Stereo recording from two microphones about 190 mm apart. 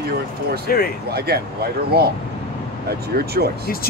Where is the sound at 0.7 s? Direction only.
50° left (ahead or behind).